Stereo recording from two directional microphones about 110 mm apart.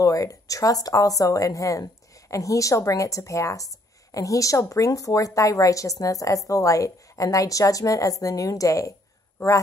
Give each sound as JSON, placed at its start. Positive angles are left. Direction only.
{"t": 0.0, "sound": "a woman's voice", "side_deg": 30}